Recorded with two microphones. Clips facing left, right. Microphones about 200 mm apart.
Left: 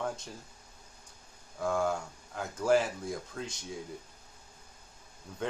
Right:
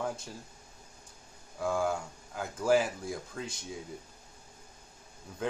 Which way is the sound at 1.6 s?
5° right (ahead or behind).